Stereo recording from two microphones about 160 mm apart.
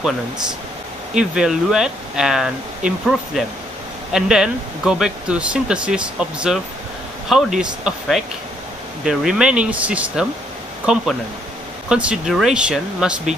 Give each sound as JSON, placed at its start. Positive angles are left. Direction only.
{"t": 1.1, "sound": "speech", "side_deg": -5}